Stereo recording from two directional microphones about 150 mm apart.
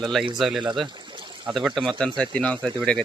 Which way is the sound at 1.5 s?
Centre (ahead or behind).